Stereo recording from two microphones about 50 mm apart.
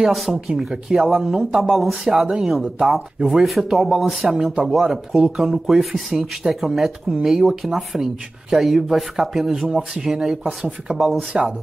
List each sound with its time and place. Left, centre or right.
0.0 s speech: centre
11.3 s speech: centre